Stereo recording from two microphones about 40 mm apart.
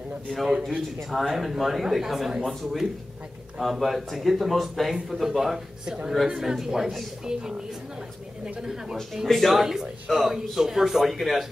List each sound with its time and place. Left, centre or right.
0.7 s speech: centre
5.9 s a man's voice: centre
9.5 s a man's voice: centre